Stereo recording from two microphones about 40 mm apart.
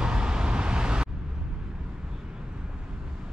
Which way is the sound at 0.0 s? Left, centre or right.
Right.